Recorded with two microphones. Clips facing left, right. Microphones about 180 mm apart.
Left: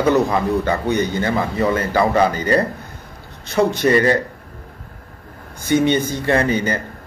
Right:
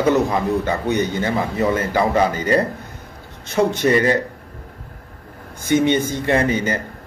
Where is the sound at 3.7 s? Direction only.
20° right (ahead or behind).